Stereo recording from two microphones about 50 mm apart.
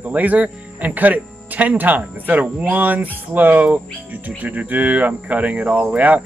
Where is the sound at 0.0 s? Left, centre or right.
Right.